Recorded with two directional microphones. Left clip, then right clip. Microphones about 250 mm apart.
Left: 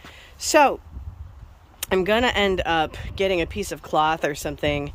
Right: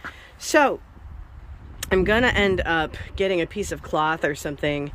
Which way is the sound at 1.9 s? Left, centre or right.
Centre.